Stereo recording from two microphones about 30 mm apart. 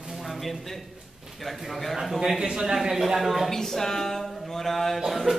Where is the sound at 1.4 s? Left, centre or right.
Centre.